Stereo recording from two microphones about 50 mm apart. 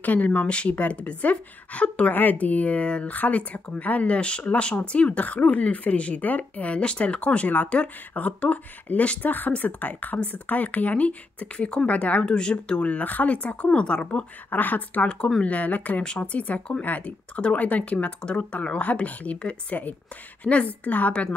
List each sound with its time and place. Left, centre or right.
0.0 s speech: left
14.5 s a woman's voice: left
16.0 s speech: left